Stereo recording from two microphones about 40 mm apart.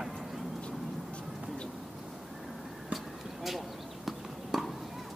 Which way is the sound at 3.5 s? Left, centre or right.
Centre.